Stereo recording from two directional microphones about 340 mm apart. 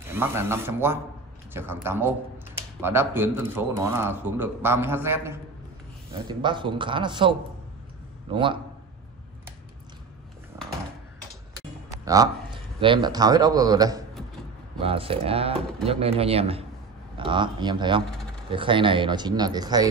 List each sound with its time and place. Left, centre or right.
0.1 s speech: centre
10.5 s a sound: centre
12.0 s a man's voice: centre